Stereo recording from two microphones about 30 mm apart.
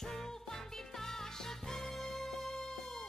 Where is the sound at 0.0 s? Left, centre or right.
Centre.